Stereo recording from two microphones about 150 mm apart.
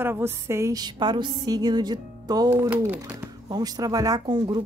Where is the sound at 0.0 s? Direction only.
15° right (ahead or behind).